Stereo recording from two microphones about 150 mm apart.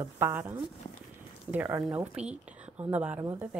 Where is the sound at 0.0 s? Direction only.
15° right (ahead or behind).